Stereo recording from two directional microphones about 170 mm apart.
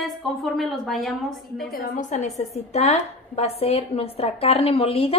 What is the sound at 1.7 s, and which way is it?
A woman's voice, 50° left (ahead or behind).